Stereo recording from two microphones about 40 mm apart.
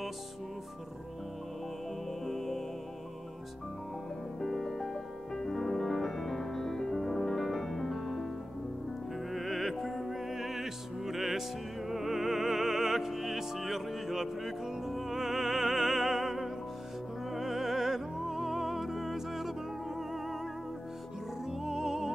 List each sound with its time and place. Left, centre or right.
2.2 s music: centre
4.4 s music: centre
9.3 s music: centre
21.5 s music: centre